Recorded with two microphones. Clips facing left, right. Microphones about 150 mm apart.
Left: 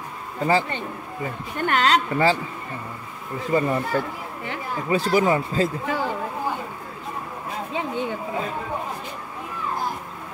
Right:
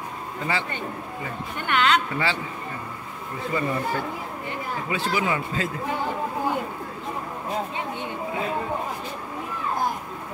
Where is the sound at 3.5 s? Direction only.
40° left (ahead or behind).